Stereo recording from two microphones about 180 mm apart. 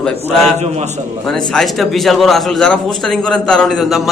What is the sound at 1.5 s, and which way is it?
A man's voice, centre (ahead or behind).